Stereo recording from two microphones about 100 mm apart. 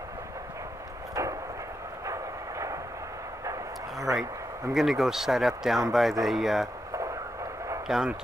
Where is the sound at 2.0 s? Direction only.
30° right (ahead or behind).